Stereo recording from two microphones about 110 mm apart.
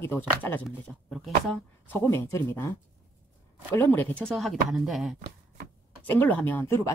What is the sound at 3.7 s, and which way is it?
Speech, 20° left (ahead or behind).